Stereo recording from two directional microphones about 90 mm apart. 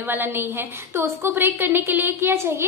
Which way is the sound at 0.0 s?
25° right (ahead or behind).